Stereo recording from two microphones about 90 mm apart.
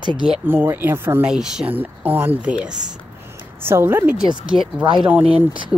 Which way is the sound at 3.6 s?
25° right (ahead or behind).